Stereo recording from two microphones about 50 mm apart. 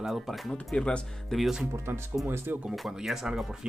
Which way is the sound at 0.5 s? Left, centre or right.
Left.